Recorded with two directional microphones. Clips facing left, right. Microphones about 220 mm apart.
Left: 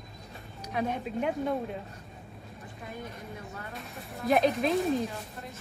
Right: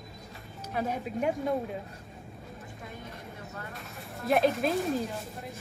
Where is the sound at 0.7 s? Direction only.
5° right (ahead or behind).